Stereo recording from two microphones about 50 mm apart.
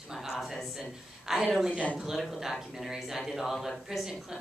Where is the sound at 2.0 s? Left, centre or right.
Centre.